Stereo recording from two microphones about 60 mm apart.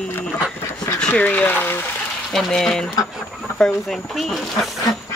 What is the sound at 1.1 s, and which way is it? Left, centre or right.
Speech, left.